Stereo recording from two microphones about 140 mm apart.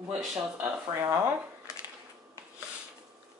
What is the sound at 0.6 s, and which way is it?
Speech, 15° right (ahead or behind).